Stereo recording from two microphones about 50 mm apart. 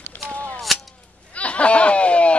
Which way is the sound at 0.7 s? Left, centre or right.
Centre.